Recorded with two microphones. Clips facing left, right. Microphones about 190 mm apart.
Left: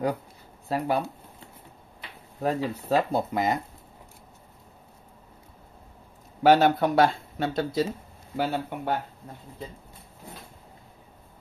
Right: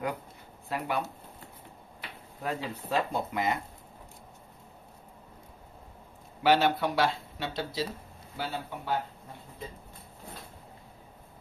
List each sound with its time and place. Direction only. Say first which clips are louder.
0.7 s speech: left 6 dB; 35° left (ahead or behind)
2.4 s speech: left 7 dB; 40° left (ahead or behind)
6.4 s speech: left 5 dB; 45° left (ahead or behind)